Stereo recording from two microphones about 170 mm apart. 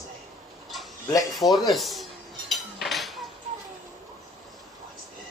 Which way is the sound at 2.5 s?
Centre (ahead or behind).